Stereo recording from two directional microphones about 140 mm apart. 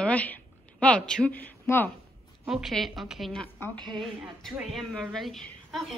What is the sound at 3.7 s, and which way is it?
Speech, 35° right (ahead or behind).